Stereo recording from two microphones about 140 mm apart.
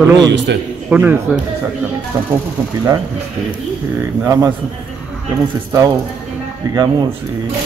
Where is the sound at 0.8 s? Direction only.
10° right (ahead or behind).